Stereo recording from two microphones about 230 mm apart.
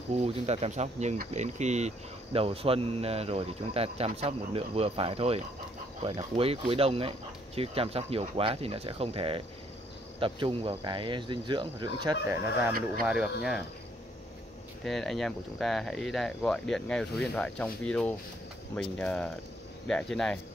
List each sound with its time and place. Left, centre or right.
0.2 s speech: right
13.0 s speech: centre
14.9 s speech: centre